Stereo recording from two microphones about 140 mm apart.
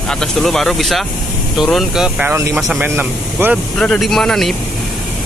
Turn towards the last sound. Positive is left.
turn(degrees=0)  # may be behind; listen again after turning